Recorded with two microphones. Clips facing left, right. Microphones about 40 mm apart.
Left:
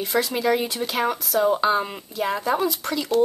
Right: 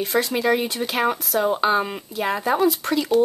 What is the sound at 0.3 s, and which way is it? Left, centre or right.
Speech, centre.